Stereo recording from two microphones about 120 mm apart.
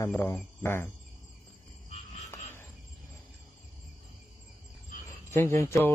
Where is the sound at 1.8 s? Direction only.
70° left (ahead or behind).